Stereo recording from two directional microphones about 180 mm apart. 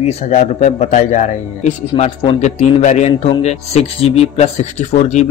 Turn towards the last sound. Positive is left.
turn(degrees=40)  # may be behind; listen again after turning